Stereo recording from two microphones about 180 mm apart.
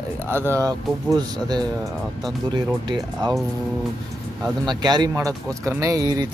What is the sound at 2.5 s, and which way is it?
Speech, 25° right (ahead or behind).